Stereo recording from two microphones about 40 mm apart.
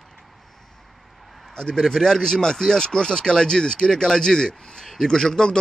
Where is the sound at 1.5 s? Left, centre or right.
Centre.